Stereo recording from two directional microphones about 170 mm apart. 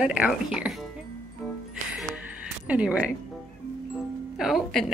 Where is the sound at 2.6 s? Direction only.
10° right (ahead or behind).